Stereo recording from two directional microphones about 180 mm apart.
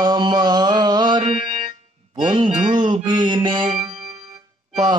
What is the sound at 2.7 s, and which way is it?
Music, 25° right (ahead or behind).